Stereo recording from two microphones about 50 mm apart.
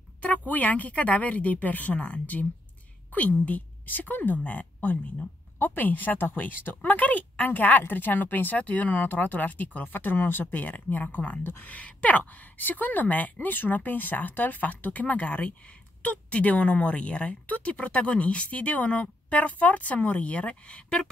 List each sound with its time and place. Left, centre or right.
0.5 s a woman's voice: left